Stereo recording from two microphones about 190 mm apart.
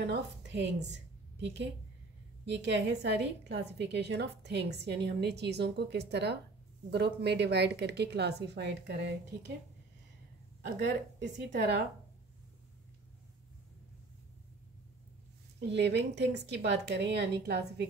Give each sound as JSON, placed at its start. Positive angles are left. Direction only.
{"t": 0.0, "sound": "a woman's voice", "side_deg": -65}
{"t": 10.8, "sound": "a woman's voice", "side_deg": -65}
{"t": 15.7, "sound": "a woman's voice", "side_deg": -65}